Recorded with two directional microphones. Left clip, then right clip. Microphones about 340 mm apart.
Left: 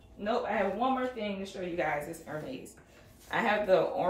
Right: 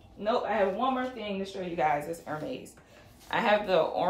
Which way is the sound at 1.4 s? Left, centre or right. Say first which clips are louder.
Right 6 dB; centre.